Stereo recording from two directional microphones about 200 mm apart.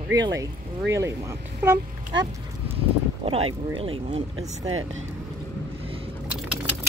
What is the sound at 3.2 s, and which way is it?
Speech, 30° right (ahead or behind).